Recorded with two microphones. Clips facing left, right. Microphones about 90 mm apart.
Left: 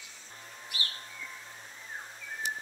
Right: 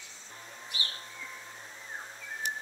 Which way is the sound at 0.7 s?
25° right (ahead or behind).